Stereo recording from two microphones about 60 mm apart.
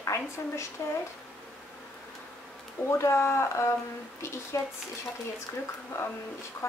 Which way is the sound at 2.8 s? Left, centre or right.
Left.